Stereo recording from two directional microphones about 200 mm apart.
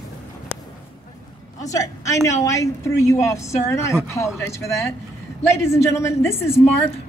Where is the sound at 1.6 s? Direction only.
15° left (ahead or behind).